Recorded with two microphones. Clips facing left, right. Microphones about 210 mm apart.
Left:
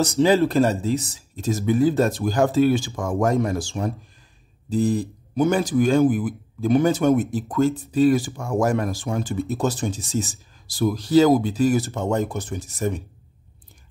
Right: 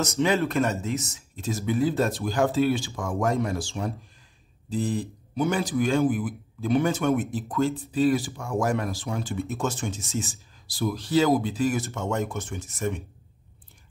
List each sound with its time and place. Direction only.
0.0 s speech: 30° left (ahead or behind)